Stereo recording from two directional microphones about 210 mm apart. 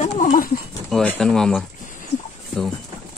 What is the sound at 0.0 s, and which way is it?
Horse, 35° left (ahead or behind).